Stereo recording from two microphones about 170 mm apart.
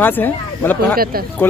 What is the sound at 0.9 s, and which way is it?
Speech, 60° right (ahead or behind).